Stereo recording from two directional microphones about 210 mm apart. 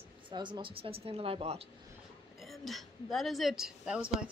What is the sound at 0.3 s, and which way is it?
Speech, 20° right (ahead or behind).